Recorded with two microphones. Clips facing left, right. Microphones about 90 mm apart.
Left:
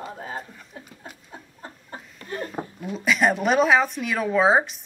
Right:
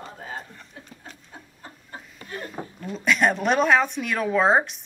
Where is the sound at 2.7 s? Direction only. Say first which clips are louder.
Even; 5° left (ahead or behind).